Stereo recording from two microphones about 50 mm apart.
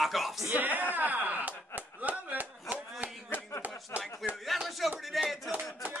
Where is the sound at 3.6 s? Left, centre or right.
Right.